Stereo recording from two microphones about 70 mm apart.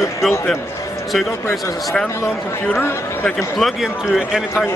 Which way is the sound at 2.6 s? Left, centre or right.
Left.